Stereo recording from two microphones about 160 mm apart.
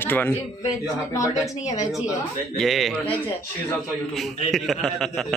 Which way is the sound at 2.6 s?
Centre (ahead or behind).